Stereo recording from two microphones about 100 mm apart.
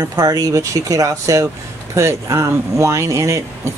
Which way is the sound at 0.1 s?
40° right (ahead or behind).